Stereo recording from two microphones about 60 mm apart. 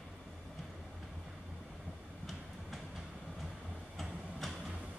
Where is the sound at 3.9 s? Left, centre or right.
Centre.